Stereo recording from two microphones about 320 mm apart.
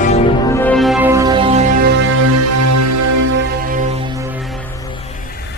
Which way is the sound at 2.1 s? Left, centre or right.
Right.